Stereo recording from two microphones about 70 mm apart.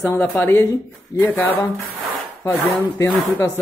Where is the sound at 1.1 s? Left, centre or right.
Left.